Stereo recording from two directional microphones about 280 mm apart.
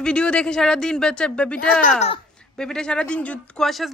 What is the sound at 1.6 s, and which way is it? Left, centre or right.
Speech, left.